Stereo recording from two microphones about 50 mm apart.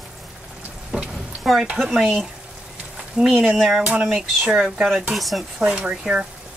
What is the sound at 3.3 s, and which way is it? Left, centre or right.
Speech, centre.